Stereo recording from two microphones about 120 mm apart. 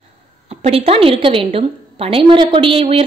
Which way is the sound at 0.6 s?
55° right (ahead or behind).